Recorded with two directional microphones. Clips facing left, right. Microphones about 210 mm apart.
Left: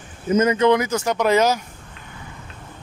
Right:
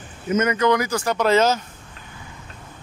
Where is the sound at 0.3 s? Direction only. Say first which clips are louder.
Left 3 dB; 30° left (ahead or behind).